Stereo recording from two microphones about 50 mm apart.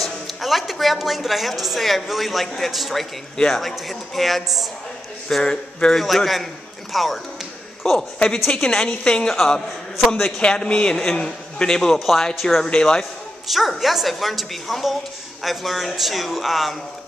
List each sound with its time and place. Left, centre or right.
0.0 s a woman's voice: centre
5.4 s a woman's voice: centre
5.9 s a woman's voice: centre
8.2 s a woman's voice: centre
9.9 s a woman's voice: centre
10.4 s a woman's voice: left; by 12.6 s centre
12.6 s a woman's voice: centre
13.5 s a woman's voice: centre